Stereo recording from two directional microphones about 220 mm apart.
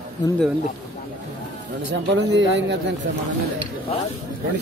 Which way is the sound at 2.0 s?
55° right (ahead or behind).